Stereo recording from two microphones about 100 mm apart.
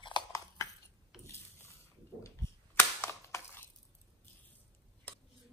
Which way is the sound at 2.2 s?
30° left (ahead or behind).